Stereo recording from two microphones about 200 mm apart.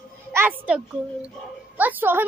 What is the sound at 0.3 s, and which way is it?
A woman's voice, 10° right (ahead or behind).